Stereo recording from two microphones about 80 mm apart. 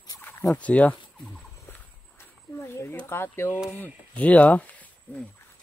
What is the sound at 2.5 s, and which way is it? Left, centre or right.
Speech, left.